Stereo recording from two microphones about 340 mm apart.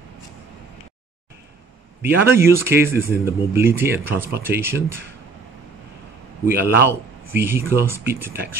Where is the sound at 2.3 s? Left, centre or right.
Centre.